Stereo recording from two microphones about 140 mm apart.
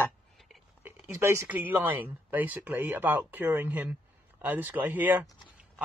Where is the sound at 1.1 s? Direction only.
20° right (ahead or behind).